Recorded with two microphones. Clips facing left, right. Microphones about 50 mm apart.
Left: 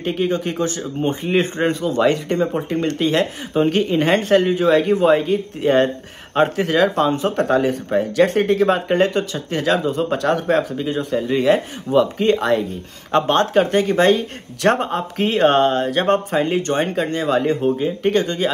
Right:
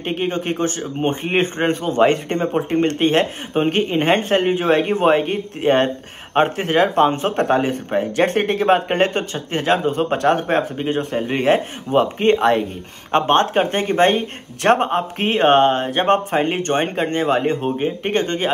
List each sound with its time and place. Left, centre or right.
0.0 s speech: right